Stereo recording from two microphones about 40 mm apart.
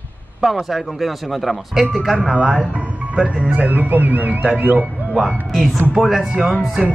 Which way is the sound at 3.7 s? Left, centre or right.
Right.